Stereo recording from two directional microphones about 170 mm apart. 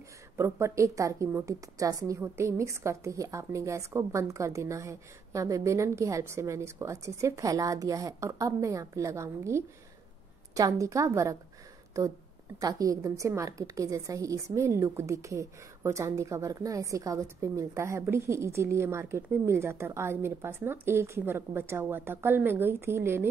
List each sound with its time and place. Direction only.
0.4 s a woman's voice: 15° right (ahead or behind)